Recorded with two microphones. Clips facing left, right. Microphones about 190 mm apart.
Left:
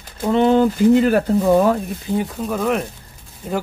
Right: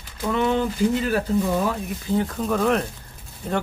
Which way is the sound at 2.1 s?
10° left (ahead or behind).